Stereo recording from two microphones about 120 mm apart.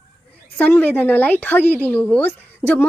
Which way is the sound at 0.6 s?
15° left (ahead or behind).